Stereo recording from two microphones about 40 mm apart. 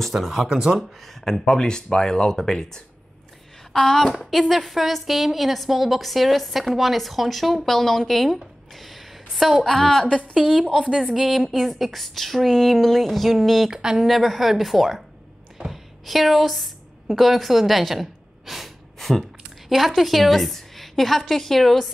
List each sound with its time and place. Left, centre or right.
0.0 s a woman's voice: centre
0.5 s a woman's voice: centre
1.0 s a woman's voice: centre
8.4 s a sound: centre
9.6 s speech: centre
10.3 s a woman's voice: centre
11.1 s a woman's voice: centre
13.7 s a woman's voice: centre
14.0 s a woman's voice: centre
15.5 s a sound: centre
17.1 s a woman's voice: centre